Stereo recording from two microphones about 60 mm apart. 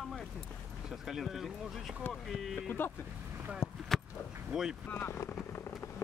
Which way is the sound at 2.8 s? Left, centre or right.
Left.